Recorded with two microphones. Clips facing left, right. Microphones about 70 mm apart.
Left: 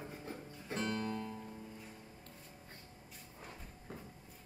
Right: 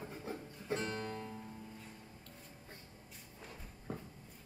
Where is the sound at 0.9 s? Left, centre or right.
Right.